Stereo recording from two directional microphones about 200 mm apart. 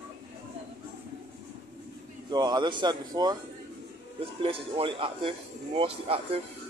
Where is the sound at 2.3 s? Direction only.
20° right (ahead or behind).